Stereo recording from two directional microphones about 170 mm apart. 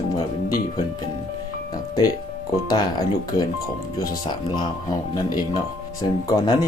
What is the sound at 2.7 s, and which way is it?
Speech, 25° left (ahead or behind).